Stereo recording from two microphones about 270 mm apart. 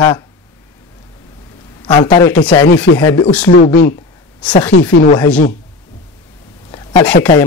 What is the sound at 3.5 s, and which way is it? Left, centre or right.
Speech, left.